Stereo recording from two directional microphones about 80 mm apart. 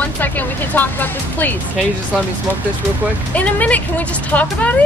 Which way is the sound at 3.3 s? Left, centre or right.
Centre.